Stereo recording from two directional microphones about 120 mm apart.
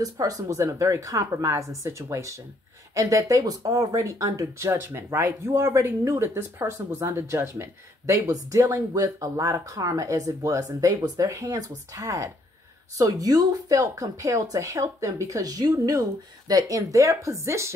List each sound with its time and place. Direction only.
0.0 s speech: 30° right (ahead or behind)